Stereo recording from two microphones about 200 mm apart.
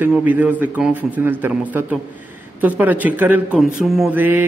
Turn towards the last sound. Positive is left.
turn(degrees=-10)  # may be behind; listen again after turning